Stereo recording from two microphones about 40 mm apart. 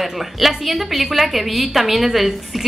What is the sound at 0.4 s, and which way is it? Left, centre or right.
A woman's voice, centre.